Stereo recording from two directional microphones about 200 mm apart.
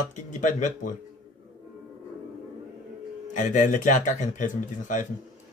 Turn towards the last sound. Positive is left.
turn(degrees=40)  # may be behind; listen again after turning